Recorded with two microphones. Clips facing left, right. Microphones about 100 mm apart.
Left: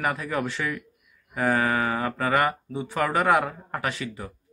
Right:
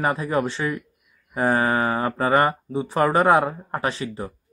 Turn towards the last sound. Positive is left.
turn(degrees=-30)  # may be behind; listen again after turning